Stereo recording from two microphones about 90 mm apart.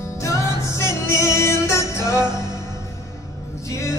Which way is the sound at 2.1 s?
50° right (ahead or behind).